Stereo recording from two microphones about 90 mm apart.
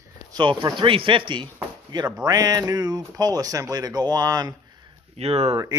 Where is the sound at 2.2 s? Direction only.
45° right (ahead or behind).